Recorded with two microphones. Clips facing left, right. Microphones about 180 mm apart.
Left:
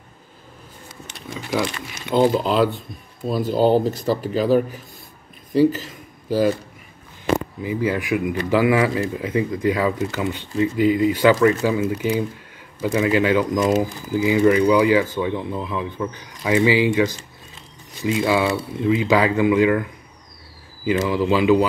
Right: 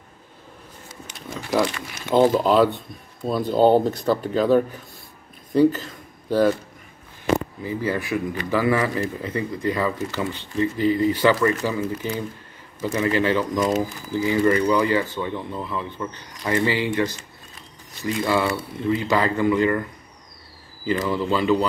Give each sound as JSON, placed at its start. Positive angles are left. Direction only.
{"t": 1.1, "sound": "a sound", "side_deg": 0}
{"t": 2.0, "sound": "speech", "side_deg": 0}
{"t": 3.4, "sound": "speech", "side_deg": -20}
{"t": 4.2, "sound": "speech", "side_deg": 5}
{"t": 7.3, "sound": "speech", "side_deg": 15}
{"t": 18.0, "sound": "speech", "side_deg": 10}
{"t": 21.1, "sound": "speech", "side_deg": 10}